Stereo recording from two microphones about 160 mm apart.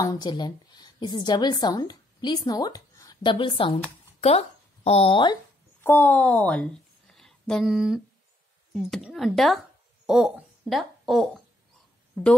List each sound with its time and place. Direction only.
0.0 s speech: 25° left (ahead or behind)
5.8 s speech: 15° left (ahead or behind)
7.2 s a sound: centre (ahead or behind)
8.7 s speech: centre (ahead or behind)